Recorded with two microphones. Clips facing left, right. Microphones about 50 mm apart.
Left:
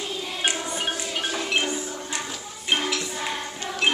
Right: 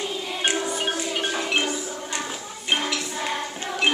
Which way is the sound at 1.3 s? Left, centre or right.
Centre.